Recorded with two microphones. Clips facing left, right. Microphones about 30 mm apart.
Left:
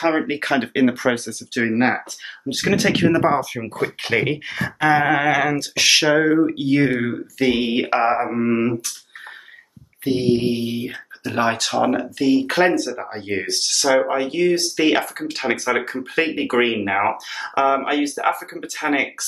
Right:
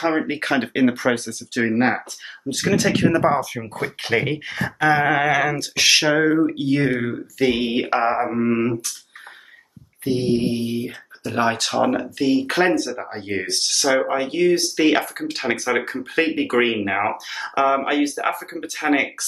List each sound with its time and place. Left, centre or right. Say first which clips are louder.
0.2 s speech: left 1 dB; centre
1.5 s speech: left 1 dB; centre
3.7 s speech: left 1 dB; centre
10.3 s speech: left 1 dB; left
11.6 s speech: left 1 dB; centre